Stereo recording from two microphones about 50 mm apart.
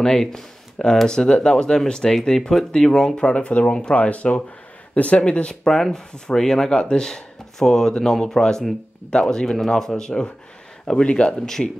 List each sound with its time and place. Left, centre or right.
0.0 s speech: centre
5.7 s speech: centre
11.3 s speech: centre